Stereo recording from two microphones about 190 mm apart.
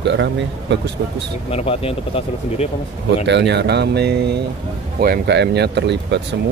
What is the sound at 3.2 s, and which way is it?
Speech, 65° right (ahead or behind).